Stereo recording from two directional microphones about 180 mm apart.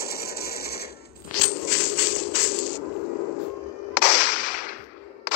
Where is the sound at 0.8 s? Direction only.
60° left (ahead or behind).